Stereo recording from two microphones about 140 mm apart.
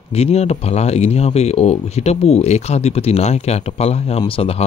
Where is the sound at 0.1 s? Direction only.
50° left (ahead or behind).